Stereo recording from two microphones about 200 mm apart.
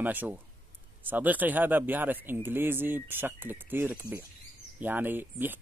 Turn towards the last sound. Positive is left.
turn(degrees=-10)  # may be behind; listen again after turning